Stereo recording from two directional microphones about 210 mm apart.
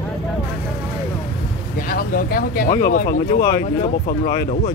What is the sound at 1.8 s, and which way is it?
Speech, 45° left (ahead or behind).